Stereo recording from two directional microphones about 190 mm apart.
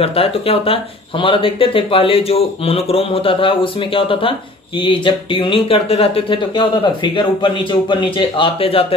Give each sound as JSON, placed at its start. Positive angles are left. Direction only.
{"t": 0.0, "sound": "speech", "side_deg": 30}